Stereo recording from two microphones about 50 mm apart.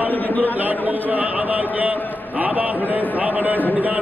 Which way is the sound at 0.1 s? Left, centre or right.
Left.